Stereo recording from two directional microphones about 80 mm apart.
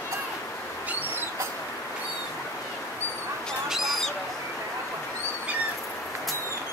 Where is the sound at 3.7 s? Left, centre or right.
Centre.